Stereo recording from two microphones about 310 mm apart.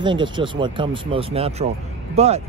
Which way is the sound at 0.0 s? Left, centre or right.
Centre.